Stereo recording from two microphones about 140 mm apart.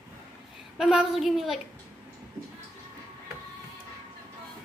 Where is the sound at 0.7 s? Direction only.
5° right (ahead or behind).